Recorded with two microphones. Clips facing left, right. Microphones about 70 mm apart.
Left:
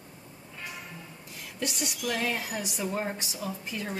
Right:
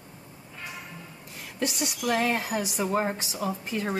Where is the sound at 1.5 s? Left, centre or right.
Right.